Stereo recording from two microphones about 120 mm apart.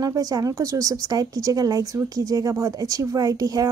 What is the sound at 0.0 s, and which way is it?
A child's voice, 30° right (ahead or behind).